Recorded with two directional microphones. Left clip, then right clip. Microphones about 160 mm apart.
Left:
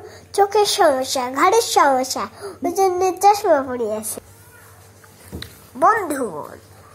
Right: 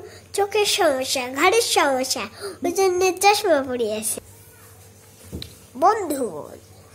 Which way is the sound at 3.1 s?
10° right (ahead or behind).